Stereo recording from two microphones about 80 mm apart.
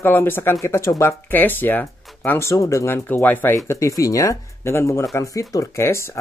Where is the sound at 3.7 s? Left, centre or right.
Left.